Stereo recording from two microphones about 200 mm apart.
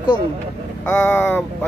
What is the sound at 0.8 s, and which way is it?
Speech, 10° left (ahead or behind).